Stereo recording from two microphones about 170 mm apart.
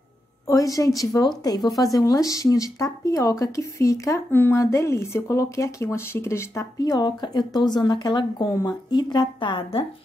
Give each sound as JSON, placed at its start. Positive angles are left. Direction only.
{"t": 0.5, "sound": "speech", "side_deg": 20}